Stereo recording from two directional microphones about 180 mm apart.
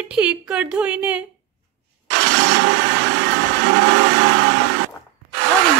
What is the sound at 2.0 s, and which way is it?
Blender, 90° right.